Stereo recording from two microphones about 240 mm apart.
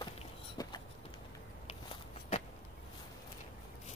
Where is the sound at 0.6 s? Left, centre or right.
Centre.